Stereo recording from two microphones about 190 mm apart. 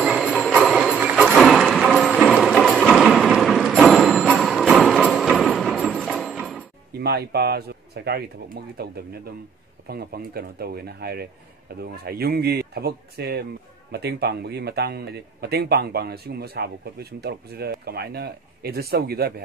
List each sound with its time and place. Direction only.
0.0 s jingle bell: centre (ahead or behind)
6.9 s a man's voice: 60° right (ahead or behind)